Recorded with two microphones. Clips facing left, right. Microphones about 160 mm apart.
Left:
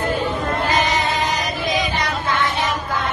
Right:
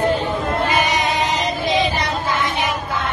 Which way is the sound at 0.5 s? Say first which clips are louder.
Right 2 dB; 10° right (ahead or behind).